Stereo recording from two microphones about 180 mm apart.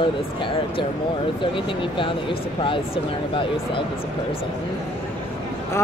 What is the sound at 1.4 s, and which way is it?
Speech, 30° left (ahead or behind).